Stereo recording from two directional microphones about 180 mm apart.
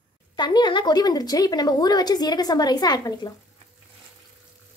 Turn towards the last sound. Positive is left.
turn(degrees=20)  # may be behind; listen again after turning